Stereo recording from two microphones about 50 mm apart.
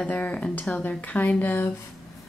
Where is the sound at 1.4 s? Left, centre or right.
Left.